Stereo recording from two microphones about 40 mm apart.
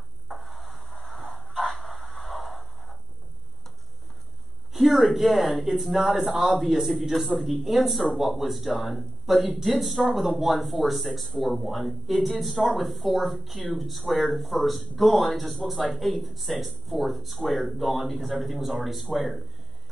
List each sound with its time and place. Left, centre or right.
0.3 s music: centre
1.7 s a sound: centre
4.7 s speech: centre
6.1 s a man's voice: centre
6.6 s speech: centre